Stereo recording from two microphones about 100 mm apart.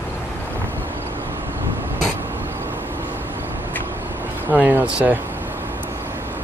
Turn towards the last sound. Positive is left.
turn(degrees=-15)  # may be behind; listen again after turning